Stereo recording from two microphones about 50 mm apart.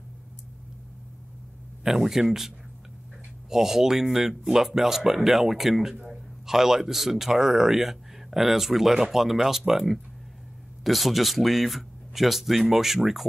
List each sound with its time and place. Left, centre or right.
1.9 s speech: centre